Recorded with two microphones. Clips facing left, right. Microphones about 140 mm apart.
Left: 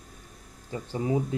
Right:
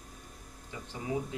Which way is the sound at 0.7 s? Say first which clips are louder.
Left 8 dB; 30° left (ahead or behind).